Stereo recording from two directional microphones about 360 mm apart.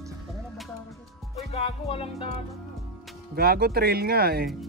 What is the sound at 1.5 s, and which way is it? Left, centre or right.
Music, centre.